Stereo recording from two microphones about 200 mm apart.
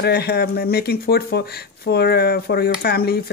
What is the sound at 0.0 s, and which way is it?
Speech, 50° left (ahead or behind).